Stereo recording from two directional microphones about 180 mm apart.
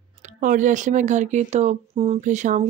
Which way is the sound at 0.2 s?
45° right (ahead or behind).